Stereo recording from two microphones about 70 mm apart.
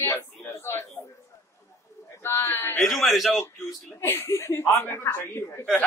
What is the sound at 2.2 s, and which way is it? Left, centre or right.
Speech, left.